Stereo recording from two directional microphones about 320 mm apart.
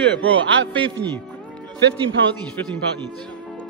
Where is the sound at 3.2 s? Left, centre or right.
Centre.